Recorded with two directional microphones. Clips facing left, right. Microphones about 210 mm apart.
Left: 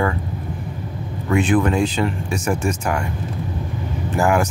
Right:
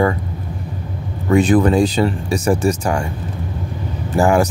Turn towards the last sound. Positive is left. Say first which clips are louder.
# right 4 dB
turn(degrees=-30)  # may be behind; listen again after turning